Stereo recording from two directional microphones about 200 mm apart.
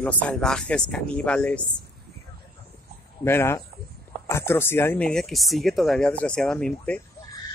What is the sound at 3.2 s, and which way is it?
A man's voice, 10° left (ahead or behind).